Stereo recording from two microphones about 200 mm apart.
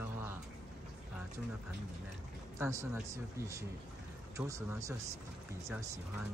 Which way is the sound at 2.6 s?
15° right (ahead or behind).